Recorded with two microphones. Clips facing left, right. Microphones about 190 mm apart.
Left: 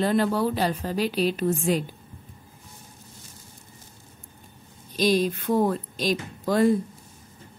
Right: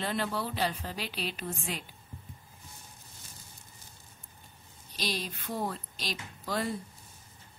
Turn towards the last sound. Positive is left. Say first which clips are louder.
# left 12 dB
turn(degrees=50)  # may be behind; listen again after turning